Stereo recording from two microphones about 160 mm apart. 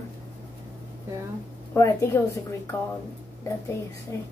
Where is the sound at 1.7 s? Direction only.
20° left (ahead or behind).